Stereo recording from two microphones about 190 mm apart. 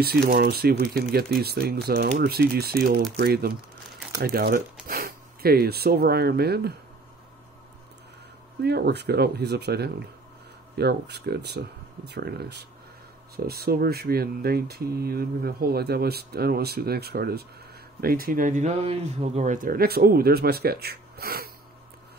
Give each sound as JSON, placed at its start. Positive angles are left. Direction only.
{"t": 0.0, "sound": "speech", "side_deg": -55}
{"t": 8.6, "sound": "speech", "side_deg": -60}